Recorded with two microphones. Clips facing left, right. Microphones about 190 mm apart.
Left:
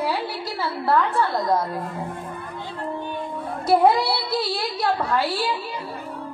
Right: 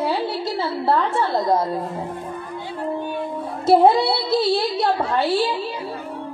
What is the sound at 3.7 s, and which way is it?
A woman's voice, 25° right (ahead or behind).